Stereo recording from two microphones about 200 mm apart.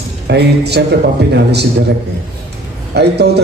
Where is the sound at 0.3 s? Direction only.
55° right (ahead or behind).